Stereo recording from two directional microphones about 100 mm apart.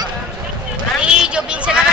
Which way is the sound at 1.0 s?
10° right (ahead or behind).